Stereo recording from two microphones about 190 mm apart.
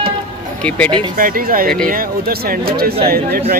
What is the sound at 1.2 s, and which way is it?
A man's voice, 50° right (ahead or behind).